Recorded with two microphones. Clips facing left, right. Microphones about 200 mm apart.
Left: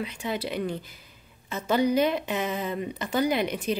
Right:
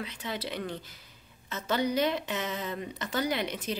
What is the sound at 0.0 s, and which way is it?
Speech, 10° left (ahead or behind).